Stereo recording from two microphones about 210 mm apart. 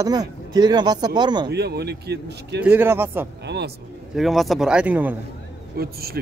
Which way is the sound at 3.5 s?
50° right (ahead or behind).